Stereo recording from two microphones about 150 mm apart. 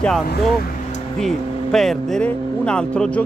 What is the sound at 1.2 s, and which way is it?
Speech, centre (ahead or behind).